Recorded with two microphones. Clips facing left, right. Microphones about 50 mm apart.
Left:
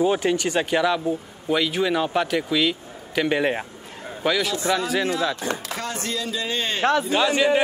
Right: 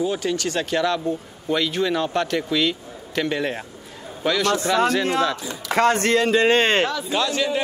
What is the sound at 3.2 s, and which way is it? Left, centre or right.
A man's voice, centre.